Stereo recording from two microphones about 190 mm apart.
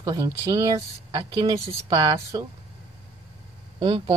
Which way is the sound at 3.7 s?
25° right (ahead or behind).